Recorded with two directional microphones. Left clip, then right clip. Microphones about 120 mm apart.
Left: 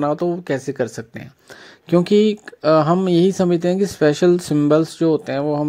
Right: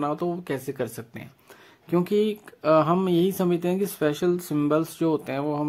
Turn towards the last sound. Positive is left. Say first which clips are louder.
# left 7 dB
turn(degrees=35)  # may be behind; listen again after turning